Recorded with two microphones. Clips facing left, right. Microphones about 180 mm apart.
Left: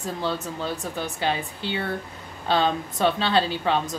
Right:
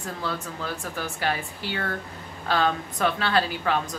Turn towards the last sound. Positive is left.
turn(degrees=25)  # may be behind; listen again after turning